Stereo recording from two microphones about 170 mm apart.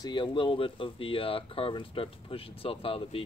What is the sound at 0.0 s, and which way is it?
Speech, 25° left (ahead or behind).